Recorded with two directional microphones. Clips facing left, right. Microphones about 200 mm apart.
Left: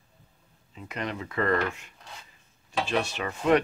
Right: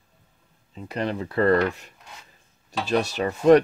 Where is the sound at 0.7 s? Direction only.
35° right (ahead or behind).